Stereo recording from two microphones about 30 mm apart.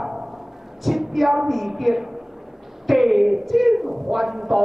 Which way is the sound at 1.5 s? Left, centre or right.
Centre.